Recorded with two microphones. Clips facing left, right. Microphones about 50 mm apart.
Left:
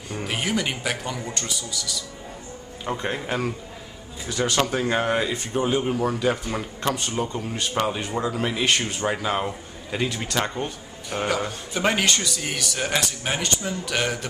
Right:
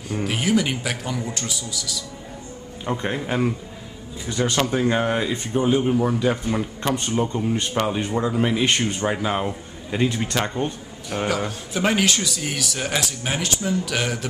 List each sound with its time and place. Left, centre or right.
0.1 s a man's voice: centre
4.3 s speech: centre
4.6 s a man's voice: centre
5.9 s a man's voice: centre
8.6 s speech: right
9.0 s speech: centre
10.0 s speech: right
11.1 s a man's voice: centre